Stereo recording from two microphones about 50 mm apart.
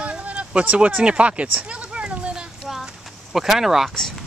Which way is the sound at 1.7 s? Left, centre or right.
Right.